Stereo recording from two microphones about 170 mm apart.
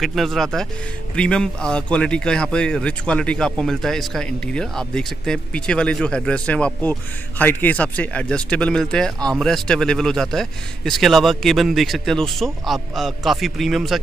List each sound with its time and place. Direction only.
0.0 s speech: centre (ahead or behind)